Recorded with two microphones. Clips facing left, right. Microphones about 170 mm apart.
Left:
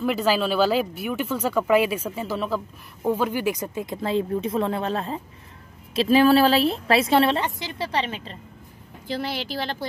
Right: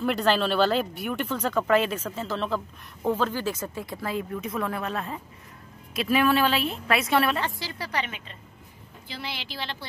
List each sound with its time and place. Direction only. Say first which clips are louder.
0.0 s a woman's voice: left 2 dB; 5° left (ahead or behind); by 8.4 s 30° left (ahead or behind)
9.0 s speech: left 9 dB; 45° left (ahead or behind)